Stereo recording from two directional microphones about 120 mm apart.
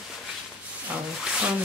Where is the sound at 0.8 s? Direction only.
10° right (ahead or behind).